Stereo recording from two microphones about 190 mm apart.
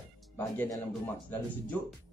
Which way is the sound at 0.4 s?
15° left (ahead or behind).